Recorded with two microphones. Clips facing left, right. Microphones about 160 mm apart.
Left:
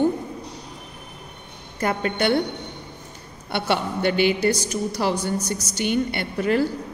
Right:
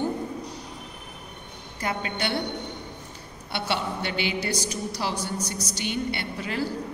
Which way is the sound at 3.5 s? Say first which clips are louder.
Left 5 dB; 50° left (ahead or behind).